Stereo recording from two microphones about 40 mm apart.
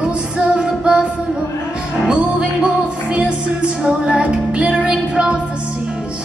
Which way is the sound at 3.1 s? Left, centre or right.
Right.